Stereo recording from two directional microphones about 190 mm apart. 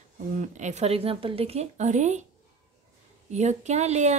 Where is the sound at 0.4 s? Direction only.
40° right (ahead or behind).